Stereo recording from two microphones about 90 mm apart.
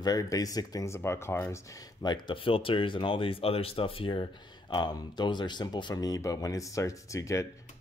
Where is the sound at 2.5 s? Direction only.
85° left.